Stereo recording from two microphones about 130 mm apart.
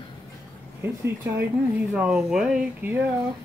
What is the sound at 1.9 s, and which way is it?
Speech, 5° right (ahead or behind).